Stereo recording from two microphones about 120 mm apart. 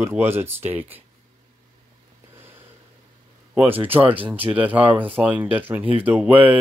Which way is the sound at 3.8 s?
15° right (ahead or behind).